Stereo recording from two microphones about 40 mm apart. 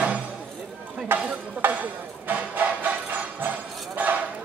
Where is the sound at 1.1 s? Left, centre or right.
Right.